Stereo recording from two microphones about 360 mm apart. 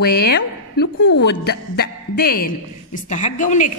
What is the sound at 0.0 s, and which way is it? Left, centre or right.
Speech, left.